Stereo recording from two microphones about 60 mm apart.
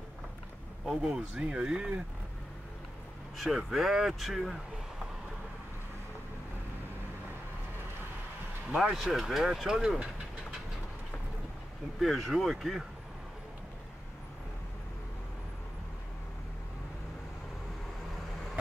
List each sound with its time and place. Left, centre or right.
0.8 s speech: centre
3.3 s speech: centre
8.6 s speech: centre
8.9 s speech: centre
12.0 s speech: centre